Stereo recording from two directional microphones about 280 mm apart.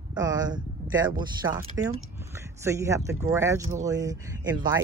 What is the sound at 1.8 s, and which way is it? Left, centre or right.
Speech, centre.